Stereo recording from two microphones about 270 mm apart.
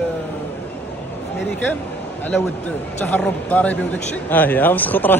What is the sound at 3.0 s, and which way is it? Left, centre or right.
Speech, centre.